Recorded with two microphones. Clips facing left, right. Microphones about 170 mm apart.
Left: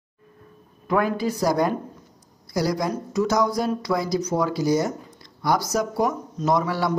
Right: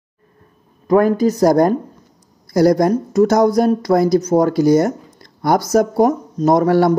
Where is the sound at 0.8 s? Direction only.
40° right (ahead or behind).